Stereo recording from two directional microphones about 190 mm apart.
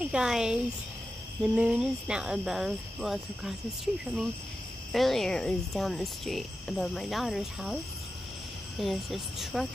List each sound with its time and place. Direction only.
0.0 s speech: 5° right (ahead or behind)
8.8 s speech: centre (ahead or behind)